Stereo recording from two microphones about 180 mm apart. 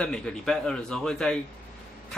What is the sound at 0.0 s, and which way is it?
Speech, 5° left (ahead or behind).